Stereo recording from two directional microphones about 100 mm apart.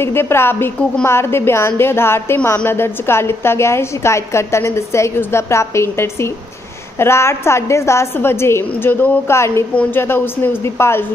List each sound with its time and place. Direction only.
0.0 s a woman's voice: 25° left (ahead or behind)